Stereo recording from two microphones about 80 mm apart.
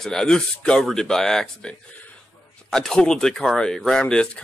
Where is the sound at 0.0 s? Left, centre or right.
Centre.